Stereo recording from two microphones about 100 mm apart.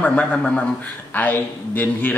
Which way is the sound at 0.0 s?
15° left (ahead or behind).